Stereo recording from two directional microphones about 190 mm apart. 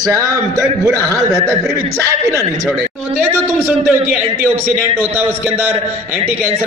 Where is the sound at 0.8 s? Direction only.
15° left (ahead or behind).